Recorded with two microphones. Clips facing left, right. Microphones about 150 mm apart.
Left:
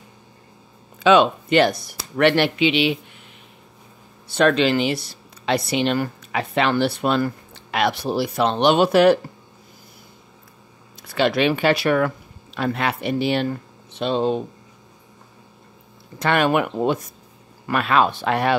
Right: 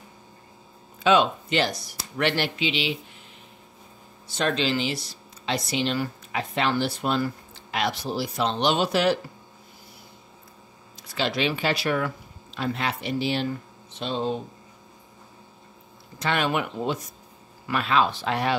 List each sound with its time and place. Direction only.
1.0 s speech: 70° left (ahead or behind)
4.3 s speech: 65° left (ahead or behind)
11.0 s speech: 60° left (ahead or behind)
16.2 s speech: 55° left (ahead or behind)